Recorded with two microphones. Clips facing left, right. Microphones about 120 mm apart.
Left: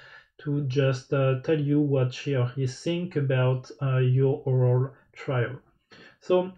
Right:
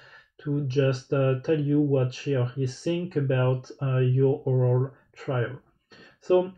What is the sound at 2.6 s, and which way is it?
Speech, 30° right (ahead or behind).